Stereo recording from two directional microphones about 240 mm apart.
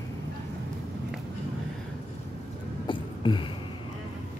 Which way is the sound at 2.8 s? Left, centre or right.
Centre.